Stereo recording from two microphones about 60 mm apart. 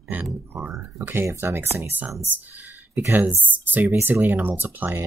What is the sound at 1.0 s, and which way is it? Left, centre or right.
Speech, right.